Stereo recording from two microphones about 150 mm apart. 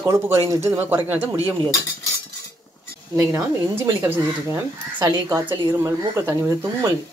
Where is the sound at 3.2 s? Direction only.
20° right (ahead or behind).